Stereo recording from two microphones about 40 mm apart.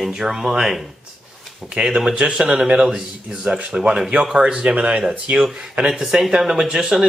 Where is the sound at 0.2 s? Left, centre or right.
Centre.